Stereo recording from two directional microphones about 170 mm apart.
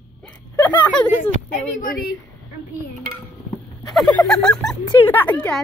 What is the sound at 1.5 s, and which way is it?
Speech, 55° left (ahead or behind).